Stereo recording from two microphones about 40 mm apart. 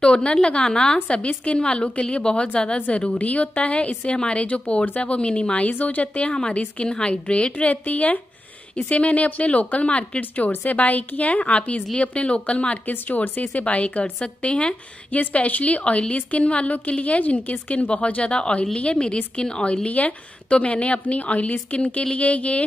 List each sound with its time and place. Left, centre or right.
0.0 s a woman's voice: left
1.0 s a woman's voice: left
3.2 s a woman's voice: left
5.7 s a woman's voice: left
6.3 s a woman's voice: left
7.7 s a woman's voice: left
12.8 s a woman's voice: left